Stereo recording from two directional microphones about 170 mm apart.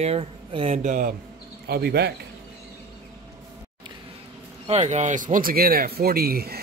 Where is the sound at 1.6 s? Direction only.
70° right (ahead or behind).